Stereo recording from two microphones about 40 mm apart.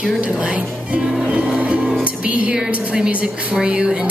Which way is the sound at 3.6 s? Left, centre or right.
Right.